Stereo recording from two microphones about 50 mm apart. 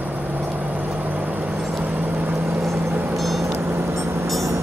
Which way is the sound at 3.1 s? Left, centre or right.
Centre.